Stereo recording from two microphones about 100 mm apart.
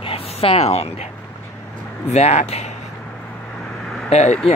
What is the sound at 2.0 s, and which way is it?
Speech, 90° left.